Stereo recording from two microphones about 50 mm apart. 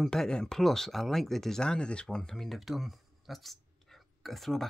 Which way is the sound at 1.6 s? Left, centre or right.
Centre.